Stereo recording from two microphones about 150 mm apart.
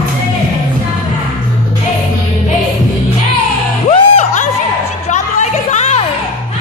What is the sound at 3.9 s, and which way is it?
Music, 50° left (ahead or behind).